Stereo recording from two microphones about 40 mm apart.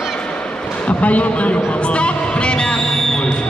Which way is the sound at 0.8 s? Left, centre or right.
Left.